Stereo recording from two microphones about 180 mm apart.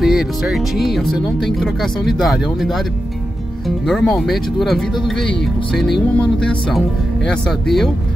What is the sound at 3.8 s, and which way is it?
Speech, centre (ahead or behind).